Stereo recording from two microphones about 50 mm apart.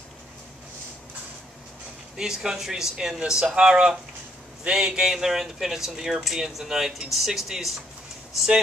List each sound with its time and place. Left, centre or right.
2.1 s speech: centre